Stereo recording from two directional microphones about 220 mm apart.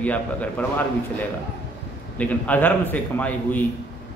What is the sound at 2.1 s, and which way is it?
A man's voice, 5° left (ahead or behind).